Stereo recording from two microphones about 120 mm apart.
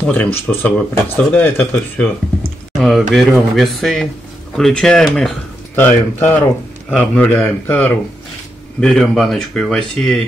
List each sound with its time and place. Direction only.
0.0 s speech: 10° left (ahead or behind)
2.8 s speech: centre (ahead or behind)
5.8 s speech: 15° left (ahead or behind)
8.8 s speech: 5° left (ahead or behind)